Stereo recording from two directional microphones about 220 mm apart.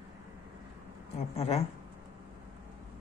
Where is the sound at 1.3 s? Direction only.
30° left (ahead or behind).